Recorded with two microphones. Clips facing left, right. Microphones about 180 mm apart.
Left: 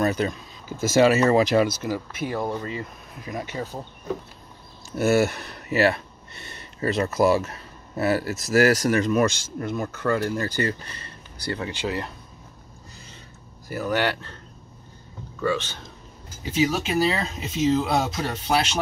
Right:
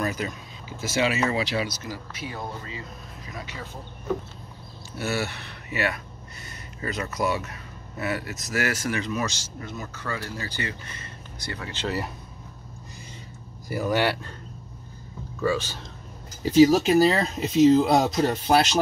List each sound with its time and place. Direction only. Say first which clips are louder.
0.0 s speech: left 6 dB; 30° left (ahead or behind)
0.7 s speech: left 8 dB; 45° left (ahead or behind)
4.9 s speech: left 9 dB; 45° left (ahead or behind); by 11.7 s 30° left (ahead or behind)
13.7 s speech: right 1 dB; 10° right (ahead or behind)
15.4 s speech: even; 5° right (ahead or behind)
16.4 s speech: right 7 dB; 40° right (ahead or behind)